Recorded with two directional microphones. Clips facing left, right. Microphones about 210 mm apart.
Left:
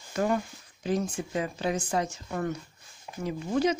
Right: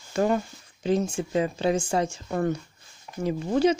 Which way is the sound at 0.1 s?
30° right (ahead or behind).